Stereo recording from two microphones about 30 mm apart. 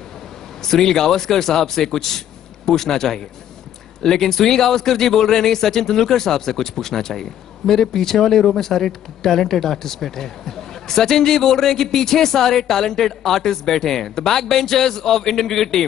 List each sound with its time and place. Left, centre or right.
0.6 s a man's voice: centre